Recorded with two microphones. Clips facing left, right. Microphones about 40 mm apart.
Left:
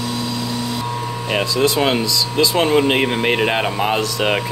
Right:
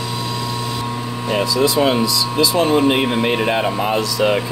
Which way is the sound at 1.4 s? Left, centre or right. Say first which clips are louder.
Right 1 dB; left.